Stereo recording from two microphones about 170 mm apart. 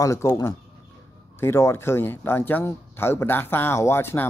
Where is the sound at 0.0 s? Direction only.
15° left (ahead or behind).